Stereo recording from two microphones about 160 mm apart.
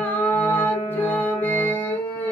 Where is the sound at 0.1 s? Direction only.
10° left (ahead or behind).